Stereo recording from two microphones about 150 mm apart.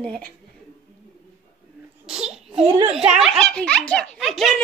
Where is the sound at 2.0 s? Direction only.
5° right (ahead or behind).